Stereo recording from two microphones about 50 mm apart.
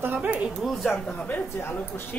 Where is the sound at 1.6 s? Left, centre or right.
Left.